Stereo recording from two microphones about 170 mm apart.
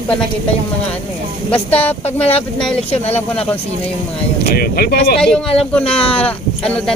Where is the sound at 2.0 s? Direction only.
35° left (ahead or behind).